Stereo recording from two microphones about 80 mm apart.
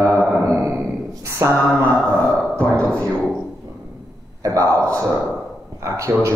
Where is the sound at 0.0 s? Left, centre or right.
Left.